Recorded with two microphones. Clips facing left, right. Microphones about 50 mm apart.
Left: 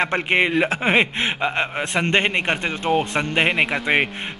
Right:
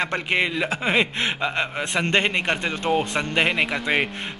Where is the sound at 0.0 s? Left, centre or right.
Left.